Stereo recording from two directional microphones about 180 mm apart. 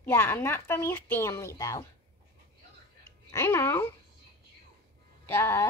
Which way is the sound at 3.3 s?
15° left (ahead or behind).